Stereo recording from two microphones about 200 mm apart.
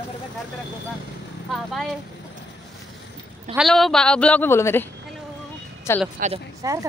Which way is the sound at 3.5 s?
Centre (ahead or behind).